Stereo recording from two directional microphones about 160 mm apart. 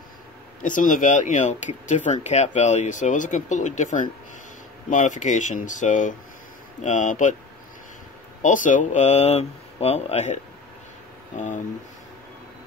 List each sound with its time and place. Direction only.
0.6 s speech: 55° left (ahead or behind)
8.4 s speech: 50° left (ahead or behind)